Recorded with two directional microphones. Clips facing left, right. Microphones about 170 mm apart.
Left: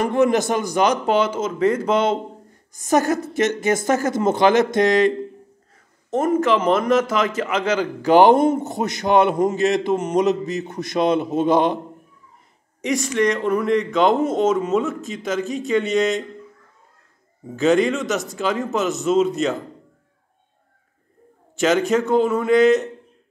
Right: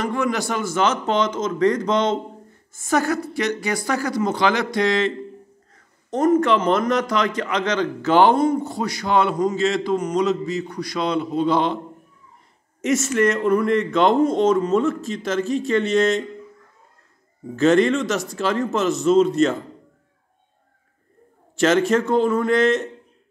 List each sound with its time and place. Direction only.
0.1 s a man's voice: 20° left (ahead or behind)
2.7 s a man's voice: 20° left (ahead or behind)
6.0 s a man's voice: 5° left (ahead or behind)
12.8 s speech: centre (ahead or behind)
17.6 s speech: centre (ahead or behind)
21.5 s speech: centre (ahead or behind)